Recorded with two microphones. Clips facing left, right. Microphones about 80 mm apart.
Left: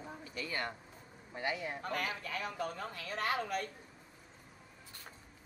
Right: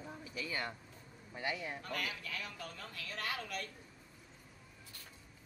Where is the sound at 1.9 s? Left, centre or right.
Left.